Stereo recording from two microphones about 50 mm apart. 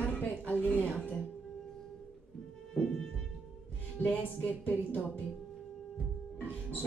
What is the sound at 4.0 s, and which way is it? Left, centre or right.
Music, left.